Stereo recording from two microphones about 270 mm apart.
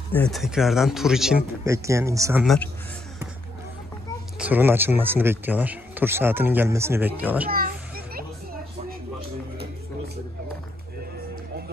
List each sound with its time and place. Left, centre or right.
0.1 s speech: centre
2.4 s speech: centre
4.4 s speech: centre
7.5 s children playing: right